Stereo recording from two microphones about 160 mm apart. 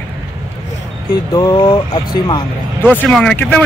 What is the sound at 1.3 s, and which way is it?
Speech, 25° left (ahead or behind).